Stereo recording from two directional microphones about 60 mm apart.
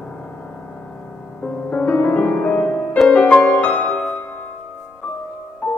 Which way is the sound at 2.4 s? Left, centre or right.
Centre.